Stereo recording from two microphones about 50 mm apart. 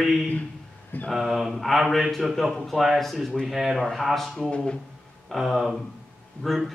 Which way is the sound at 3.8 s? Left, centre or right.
Centre.